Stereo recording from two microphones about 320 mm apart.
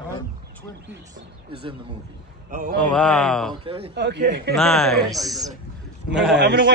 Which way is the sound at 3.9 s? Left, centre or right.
Right.